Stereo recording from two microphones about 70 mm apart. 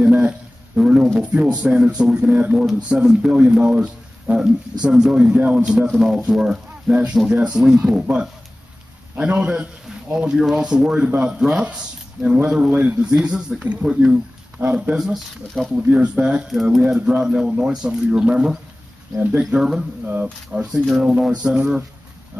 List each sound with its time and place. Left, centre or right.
0.0 s a sound: centre
1.3 s speech: centre
15.7 s speech: centre